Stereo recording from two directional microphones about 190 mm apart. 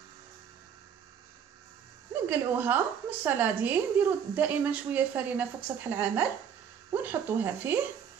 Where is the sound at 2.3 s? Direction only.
10° right (ahead or behind).